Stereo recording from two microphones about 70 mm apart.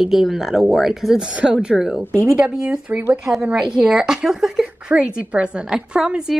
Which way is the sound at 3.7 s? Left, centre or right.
Centre.